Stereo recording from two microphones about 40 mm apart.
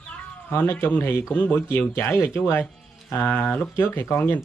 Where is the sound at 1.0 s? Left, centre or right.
Left.